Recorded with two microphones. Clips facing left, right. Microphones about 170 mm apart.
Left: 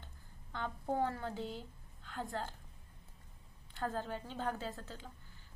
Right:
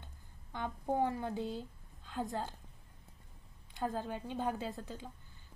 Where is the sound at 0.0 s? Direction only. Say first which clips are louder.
Even; 15° right (ahead or behind).